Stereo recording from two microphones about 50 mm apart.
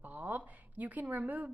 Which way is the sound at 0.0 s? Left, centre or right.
Right.